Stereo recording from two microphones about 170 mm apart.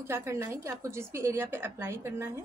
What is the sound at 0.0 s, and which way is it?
Speech, 15° right (ahead or behind).